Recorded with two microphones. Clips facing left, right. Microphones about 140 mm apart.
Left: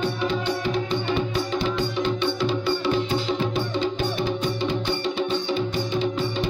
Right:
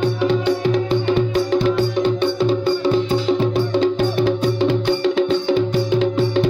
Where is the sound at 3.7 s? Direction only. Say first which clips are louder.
Right 8 dB; 75° right (ahead or behind).